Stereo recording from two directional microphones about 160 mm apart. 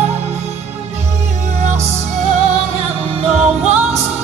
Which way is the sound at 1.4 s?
45° right (ahead or behind).